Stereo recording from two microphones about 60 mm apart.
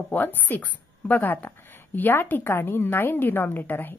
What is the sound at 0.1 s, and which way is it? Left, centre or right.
A woman's voice, left.